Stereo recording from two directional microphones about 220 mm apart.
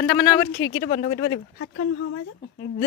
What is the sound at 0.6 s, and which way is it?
Speech, 50° left (ahead or behind).